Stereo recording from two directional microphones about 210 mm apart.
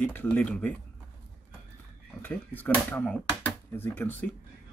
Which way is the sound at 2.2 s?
10° left (ahead or behind).